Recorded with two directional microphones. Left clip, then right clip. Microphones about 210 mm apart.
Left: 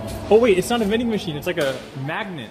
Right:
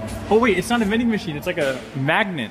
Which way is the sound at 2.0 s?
25° right (ahead or behind).